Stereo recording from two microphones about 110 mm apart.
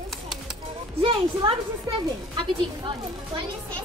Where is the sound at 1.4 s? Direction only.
50° right (ahead or behind).